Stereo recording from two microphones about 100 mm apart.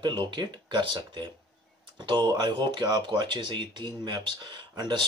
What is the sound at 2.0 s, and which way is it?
Speech, 50° right (ahead or behind).